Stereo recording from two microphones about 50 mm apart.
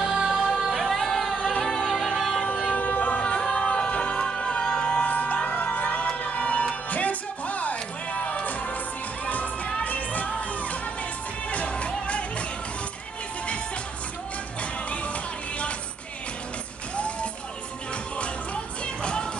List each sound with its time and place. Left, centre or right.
0.0 s music: centre
0.7 s music: centre
1.9 s music: centre
2.7 s music: left
14.6 s music: left
16.9 s music: left